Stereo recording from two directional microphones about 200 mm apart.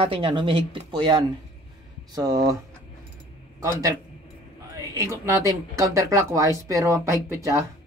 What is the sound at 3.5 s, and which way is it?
A man's voice, 15° right (ahead or behind).